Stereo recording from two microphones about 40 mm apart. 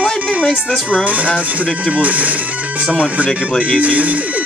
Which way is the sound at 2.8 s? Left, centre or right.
Right.